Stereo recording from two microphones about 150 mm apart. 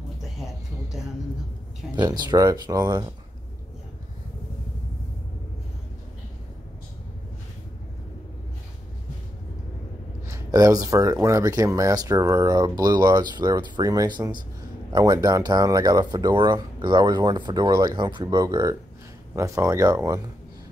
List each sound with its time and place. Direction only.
0.2 s a sound: centre (ahead or behind)
2.0 s speech: 30° right (ahead or behind)
10.2 s speech: 20° right (ahead or behind)